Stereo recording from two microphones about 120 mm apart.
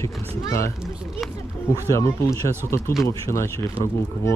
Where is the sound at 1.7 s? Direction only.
25° left (ahead or behind).